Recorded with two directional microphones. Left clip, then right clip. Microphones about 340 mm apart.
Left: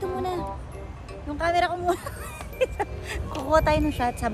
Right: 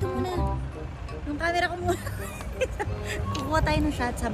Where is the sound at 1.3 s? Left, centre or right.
Centre.